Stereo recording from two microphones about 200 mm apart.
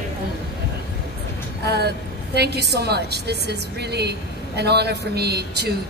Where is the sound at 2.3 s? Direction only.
55° right (ahead or behind).